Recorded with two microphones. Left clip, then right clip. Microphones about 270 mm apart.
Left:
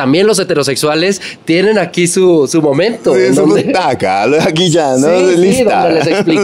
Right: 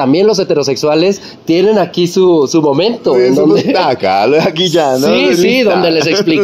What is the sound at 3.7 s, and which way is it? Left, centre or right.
Speech, left.